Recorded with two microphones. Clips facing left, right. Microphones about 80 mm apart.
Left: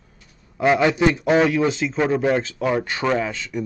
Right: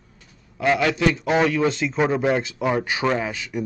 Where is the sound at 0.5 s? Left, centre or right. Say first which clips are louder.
Left 3 dB; left.